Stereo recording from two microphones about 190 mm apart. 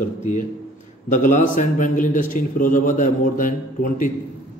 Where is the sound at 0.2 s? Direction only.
40° left (ahead or behind).